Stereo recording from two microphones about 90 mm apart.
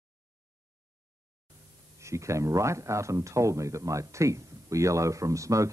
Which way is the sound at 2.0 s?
35° right (ahead or behind).